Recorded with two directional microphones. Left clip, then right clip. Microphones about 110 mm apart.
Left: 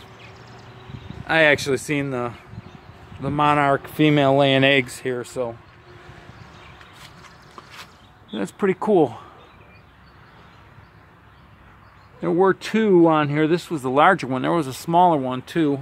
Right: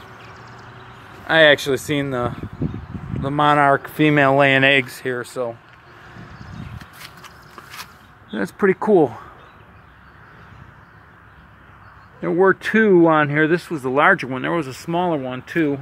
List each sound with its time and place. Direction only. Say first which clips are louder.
1.2 s speech: right 4 dB; 5° left (ahead or behind)
4.0 s speech: right 2 dB; 50° left (ahead or behind)
4.8 s speech: right 2 dB; 25° left (ahead or behind)
8.3 s speech: right 4 dB; 5° right (ahead or behind)
12.2 s speech: right 2 dB; 20° left (ahead or behind)
14.3 s speech: left 1 dB; 45° left (ahead or behind)
14.7 s speech: left 5 dB; 75° left (ahead or behind)